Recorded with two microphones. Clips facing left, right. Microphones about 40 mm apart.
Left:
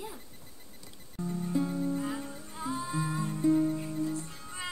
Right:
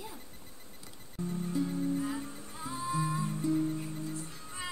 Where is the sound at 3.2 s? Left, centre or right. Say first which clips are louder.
Left 4 dB; left.